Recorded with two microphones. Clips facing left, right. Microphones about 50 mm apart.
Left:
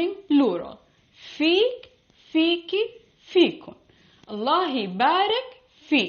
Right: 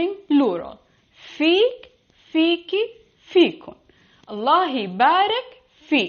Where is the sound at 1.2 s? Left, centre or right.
Right; by 2.9 s centre.